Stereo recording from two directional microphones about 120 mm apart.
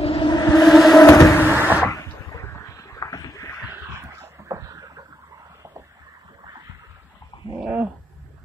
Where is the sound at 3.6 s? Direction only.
20° right (ahead or behind).